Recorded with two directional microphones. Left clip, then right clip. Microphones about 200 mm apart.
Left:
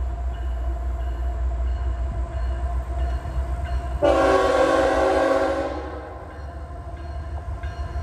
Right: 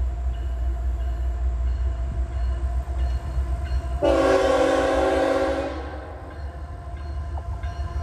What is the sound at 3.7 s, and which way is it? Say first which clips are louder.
Train: left 2 dB; 10° left (ahead or behind).